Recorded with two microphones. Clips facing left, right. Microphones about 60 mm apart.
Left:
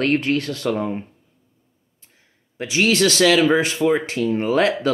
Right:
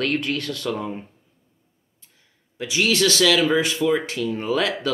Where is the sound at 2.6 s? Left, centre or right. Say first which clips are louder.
Left 3 dB; left.